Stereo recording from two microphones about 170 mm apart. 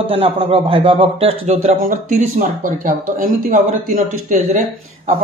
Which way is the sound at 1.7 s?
50° right (ahead or behind).